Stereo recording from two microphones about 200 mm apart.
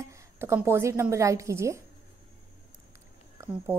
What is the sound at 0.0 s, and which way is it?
A woman's voice, 15° right (ahead or behind).